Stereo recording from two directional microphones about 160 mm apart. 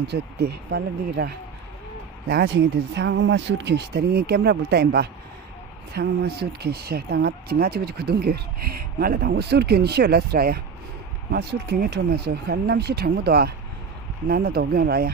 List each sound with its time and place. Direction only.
0.0 s speech: 90° right; by 15.0 s 70° right (ahead or behind)